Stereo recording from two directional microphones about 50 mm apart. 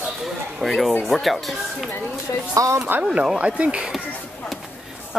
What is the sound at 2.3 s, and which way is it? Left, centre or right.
Speech, left.